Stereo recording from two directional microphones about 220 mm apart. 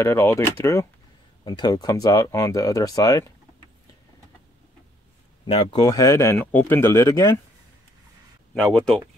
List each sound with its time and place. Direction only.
0.0 s speech: 10° left (ahead or behind)
5.5 s speech: 25° left (ahead or behind)
8.5 s speech: 5° left (ahead or behind)